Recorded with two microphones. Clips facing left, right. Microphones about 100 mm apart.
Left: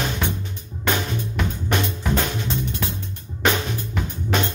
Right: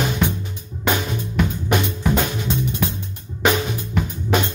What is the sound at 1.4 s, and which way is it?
Drum kit, 10° right (ahead or behind).